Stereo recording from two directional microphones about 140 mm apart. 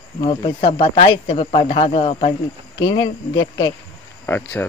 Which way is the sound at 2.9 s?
30° left (ahead or behind).